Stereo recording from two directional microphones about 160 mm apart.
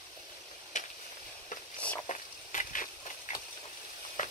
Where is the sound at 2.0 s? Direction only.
55° left (ahead or behind).